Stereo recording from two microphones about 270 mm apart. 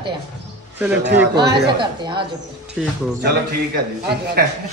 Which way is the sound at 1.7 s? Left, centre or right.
Centre.